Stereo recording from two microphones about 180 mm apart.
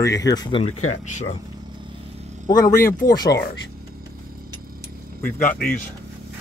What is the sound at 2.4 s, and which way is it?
Speech, 20° left (ahead or behind).